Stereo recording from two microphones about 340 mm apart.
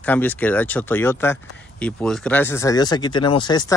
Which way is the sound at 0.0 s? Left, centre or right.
Centre.